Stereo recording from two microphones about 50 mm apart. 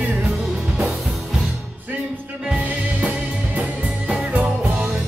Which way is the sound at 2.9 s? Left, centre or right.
Right.